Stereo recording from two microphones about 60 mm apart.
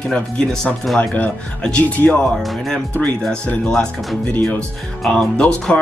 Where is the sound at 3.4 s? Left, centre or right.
Left.